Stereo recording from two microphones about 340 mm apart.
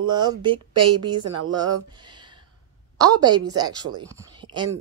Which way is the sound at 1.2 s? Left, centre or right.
Right.